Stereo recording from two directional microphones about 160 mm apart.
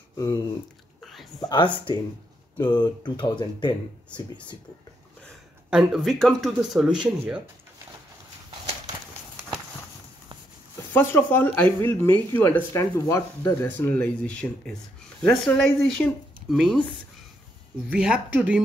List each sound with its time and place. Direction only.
1.4 s speech: 30° left (ahead or behind)
5.7 s speech: 5° right (ahead or behind)
10.9 s speech: 15° left (ahead or behind)
17.9 s speech: 5° right (ahead or behind)